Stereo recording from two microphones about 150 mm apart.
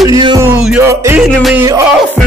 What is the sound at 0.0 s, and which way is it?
Music, 25° right (ahead or behind).